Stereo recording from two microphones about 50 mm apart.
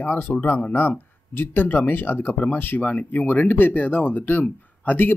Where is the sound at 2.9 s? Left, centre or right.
Left.